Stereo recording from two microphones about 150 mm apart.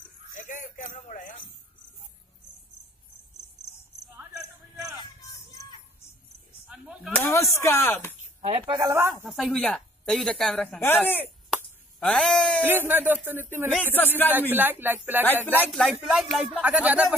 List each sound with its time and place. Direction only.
0.3 s a sound: 60° left (ahead or behind)
4.2 s a sound: 5° right (ahead or behind)
4.9 s vehicle: 30° left (ahead or behind)
6.7 s a sound: 5° right (ahead or behind)
7.2 s a sound: 20° left (ahead or behind)
8.4 s speech: 50° right (ahead or behind)
8.6 s speech: 30° right (ahead or behind)
8.9 s speech: 15° right (ahead or behind)
9.2 s speech: 5° right (ahead or behind); by 11.2 s 10° left (ahead or behind)
11.5 s finger snapping: 5° left (ahead or behind)
12.6 s speech: 15° right (ahead or behind)
13.9 s a man's voice: 15° left (ahead or behind)
14.5 s speech: 15° right (ahead or behind)
15.6 s speech: centre (ahead or behind)